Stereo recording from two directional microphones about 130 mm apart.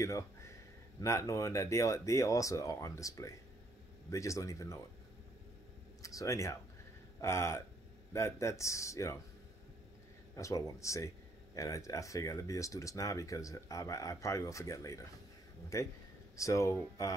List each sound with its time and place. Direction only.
0.0 s a sound: 20° left (ahead or behind)
1.0 s speech: 25° left (ahead or behind)
6.0 s speech: 25° left (ahead or behind)
10.3 s speech: 25° left (ahead or behind)